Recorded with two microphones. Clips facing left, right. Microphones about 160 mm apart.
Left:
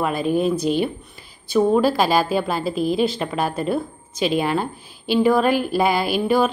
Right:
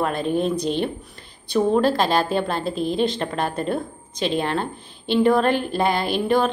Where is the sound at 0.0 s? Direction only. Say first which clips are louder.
Left 2 dB; 5° left (ahead or behind).